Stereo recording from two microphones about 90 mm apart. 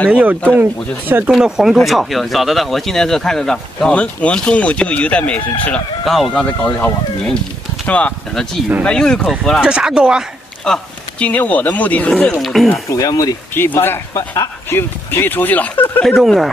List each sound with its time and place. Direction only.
0.1 s speech: 15° right (ahead or behind)
1.3 s speech: 5° right (ahead or behind); by 5.8 s 15° left (ahead or behind)
6.0 s speech: centre (ahead or behind)
6.3 s speech: 15° left (ahead or behind)
9.6 s speech: 10° right (ahead or behind)
10.6 s speech: 10° left (ahead or behind)
12.4 s speech: centre (ahead or behind)
12.9 s speech: 40° left (ahead or behind)
13.6 s speech: 25° left (ahead or behind)
14.1 s speech: 40° left (ahead or behind)
14.7 s speech: 25° left (ahead or behind)
16.0 s speech: 5° left (ahead or behind)